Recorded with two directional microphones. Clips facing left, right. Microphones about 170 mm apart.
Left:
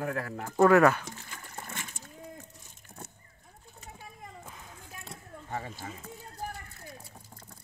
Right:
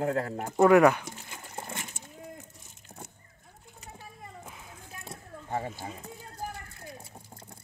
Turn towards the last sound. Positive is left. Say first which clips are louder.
# right 2 dB
turn(degrees=-25)  # may be behind; listen again after turning